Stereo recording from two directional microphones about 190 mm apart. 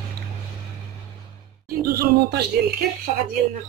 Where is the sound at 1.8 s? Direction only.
55° right (ahead or behind).